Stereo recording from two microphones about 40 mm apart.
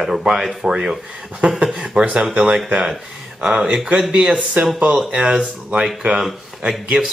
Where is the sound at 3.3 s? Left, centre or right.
Right.